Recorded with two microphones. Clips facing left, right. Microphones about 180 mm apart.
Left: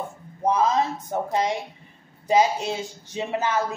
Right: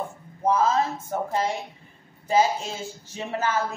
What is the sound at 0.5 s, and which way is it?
Speech, 15° left (ahead or behind).